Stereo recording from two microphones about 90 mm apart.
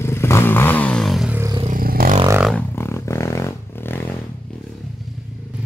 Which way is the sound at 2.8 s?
30° left (ahead or behind).